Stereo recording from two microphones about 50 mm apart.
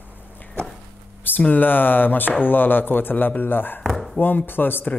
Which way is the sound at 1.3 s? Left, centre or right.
Left.